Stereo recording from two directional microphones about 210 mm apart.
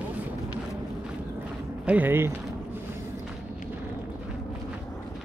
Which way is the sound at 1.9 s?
10° right (ahead or behind).